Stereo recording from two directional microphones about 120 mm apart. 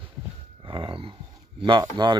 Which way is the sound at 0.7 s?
40° right (ahead or behind).